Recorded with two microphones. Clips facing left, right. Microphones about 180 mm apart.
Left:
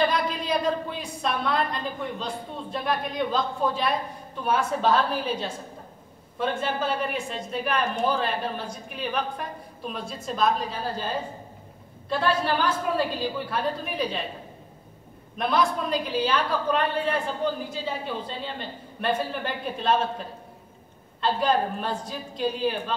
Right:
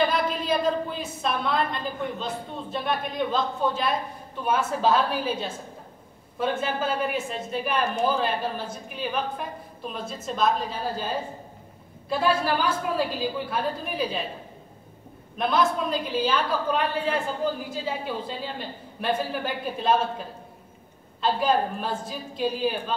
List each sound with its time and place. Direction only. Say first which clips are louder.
0.0 s a woman's voice: even; centre (ahead or behind)
12.1 s a woman's voice: right 1 dB; 5° right (ahead or behind)
15.3 s a woman's voice: right 1 dB; centre (ahead or behind)
17.8 s a woman's voice: right 3 dB; 5° right (ahead or behind)
21.2 s a woman's voice: even; 5° right (ahead or behind)